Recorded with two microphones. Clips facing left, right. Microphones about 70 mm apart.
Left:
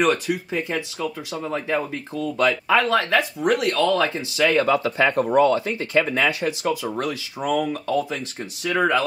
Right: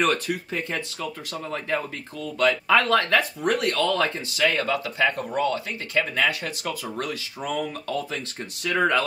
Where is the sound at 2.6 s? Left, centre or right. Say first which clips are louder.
Left 1 dB; centre.